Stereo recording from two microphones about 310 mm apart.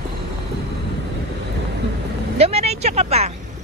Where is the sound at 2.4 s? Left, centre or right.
Centre.